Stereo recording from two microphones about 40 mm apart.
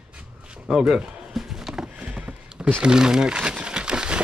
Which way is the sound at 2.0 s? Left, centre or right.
Right.